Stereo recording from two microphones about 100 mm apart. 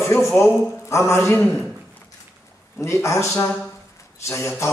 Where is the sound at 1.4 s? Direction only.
Centre (ahead or behind).